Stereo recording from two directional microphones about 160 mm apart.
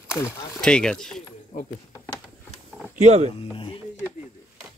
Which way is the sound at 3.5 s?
35° left (ahead or behind).